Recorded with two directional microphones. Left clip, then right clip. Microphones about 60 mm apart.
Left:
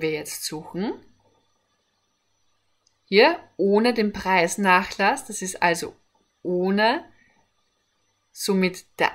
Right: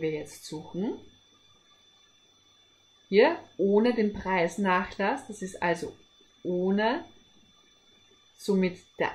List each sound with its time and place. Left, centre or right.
0.0 s speech: left
3.1 s speech: left
8.4 s speech: left